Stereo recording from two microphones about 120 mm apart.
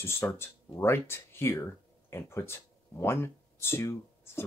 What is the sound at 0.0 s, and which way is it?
Speech, 20° left (ahead or behind).